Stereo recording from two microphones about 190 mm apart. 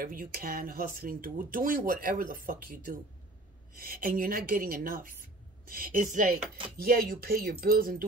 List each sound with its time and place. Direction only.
0.0 s speech: 50° right (ahead or behind)